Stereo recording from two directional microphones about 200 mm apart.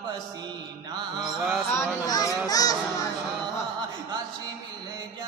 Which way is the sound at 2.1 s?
20° left (ahead or behind).